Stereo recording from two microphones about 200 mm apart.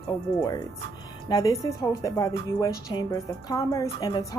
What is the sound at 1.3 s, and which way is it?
A woman's voice, 20° left (ahead or behind).